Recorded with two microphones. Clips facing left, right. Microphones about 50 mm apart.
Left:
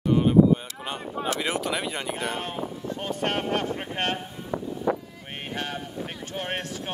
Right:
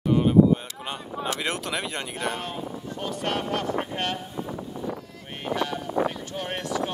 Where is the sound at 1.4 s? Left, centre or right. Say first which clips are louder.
Left 2 dB; centre.